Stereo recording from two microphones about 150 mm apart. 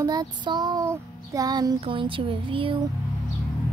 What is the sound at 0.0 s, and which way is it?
A woman's voice, 25° right (ahead or behind).